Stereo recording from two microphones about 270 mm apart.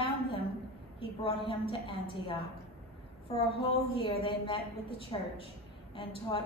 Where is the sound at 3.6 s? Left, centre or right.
Centre.